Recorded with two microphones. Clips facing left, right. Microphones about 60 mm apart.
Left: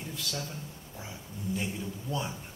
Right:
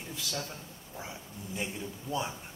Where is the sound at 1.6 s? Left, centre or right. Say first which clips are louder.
Left 2 dB; centre.